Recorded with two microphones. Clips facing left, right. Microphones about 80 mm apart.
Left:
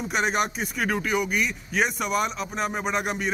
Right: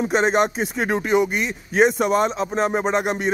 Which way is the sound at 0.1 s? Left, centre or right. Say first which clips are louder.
Right 5 dB; right.